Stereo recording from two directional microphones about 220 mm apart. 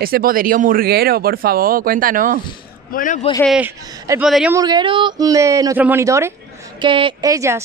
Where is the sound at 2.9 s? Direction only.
35° left (ahead or behind).